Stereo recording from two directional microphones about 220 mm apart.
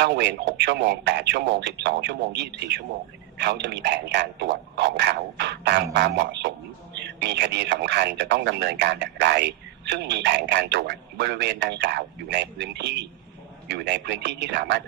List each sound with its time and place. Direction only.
0.0 s a man's voice: 50° right (ahead or behind)